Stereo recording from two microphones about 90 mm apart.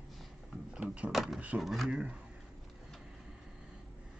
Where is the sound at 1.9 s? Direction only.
10° right (ahead or behind).